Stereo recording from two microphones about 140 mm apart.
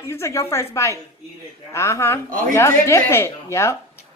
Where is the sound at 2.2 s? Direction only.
80° right.